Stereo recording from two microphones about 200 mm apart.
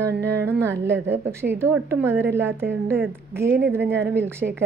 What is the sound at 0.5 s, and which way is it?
A woman's voice, 10° right (ahead or behind).